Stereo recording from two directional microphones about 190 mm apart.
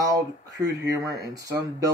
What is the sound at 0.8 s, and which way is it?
Speech, 15° right (ahead or behind).